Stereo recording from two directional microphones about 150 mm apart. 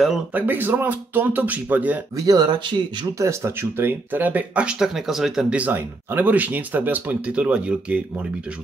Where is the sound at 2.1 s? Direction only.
25° right (ahead or behind).